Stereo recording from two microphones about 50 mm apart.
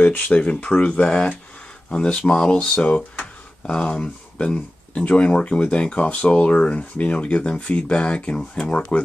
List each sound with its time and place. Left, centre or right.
0.0 s speech: left